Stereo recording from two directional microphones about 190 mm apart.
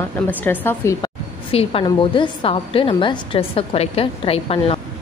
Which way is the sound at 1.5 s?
30° left (ahead or behind).